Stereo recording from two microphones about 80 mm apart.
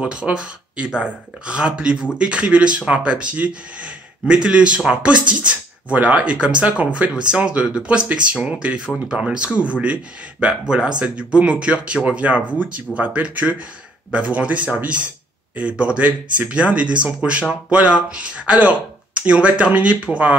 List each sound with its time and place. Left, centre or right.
0.0 s speech: centre